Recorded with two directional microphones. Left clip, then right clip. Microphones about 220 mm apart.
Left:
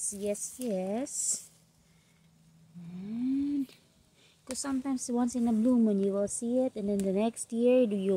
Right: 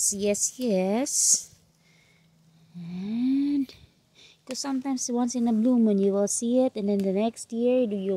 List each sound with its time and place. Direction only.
0.0 s speech: 40° right (ahead or behind)
2.9 s speech: 25° right (ahead or behind)
4.2 s a woman's voice: 10° right (ahead or behind)
7.0 s speech: 10° right (ahead or behind)